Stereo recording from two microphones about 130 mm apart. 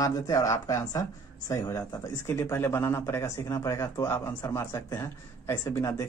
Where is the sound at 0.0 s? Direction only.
25° left (ahead or behind).